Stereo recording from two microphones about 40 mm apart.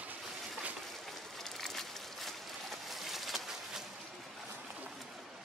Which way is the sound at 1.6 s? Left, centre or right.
Centre.